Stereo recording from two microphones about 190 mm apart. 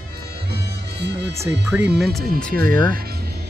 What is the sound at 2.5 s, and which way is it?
Speech, 50° right (ahead or behind).